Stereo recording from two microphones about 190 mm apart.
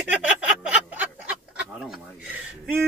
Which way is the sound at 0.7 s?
5° right (ahead or behind).